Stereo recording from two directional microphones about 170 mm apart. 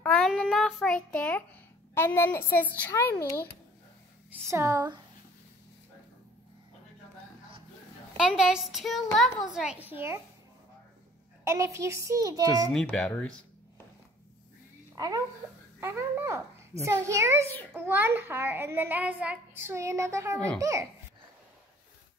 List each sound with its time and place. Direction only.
0.0 s child singing: 5° left (ahead or behind)
2.0 s a child's voice: 15° left (ahead or behind)
4.5 s a woman's voice: 15° right (ahead or behind)
8.2 s a child's voice: 5° right (ahead or behind)
11.4 s a child's voice: 15° right (ahead or behind)
12.7 s a child's voice: 5° left (ahead or behind)
15.0 s a woman's voice: 20° right (ahead or behind)
15.8 s a child's voice: 10° right (ahead or behind)